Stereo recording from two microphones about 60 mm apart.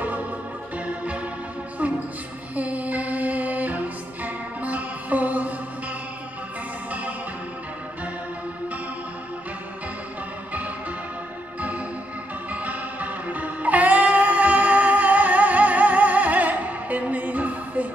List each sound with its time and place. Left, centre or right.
2.5 s music: right
12.6 s music: right